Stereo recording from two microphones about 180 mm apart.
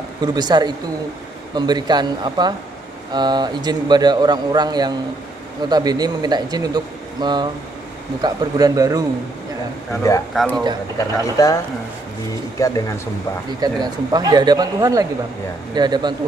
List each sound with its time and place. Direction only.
0.2 s speech: 25° right (ahead or behind)
10.3 s speech: 5° left (ahead or behind)
11.0 s speech: 20° left (ahead or behind)
13.6 s speech: 20° right (ahead or behind)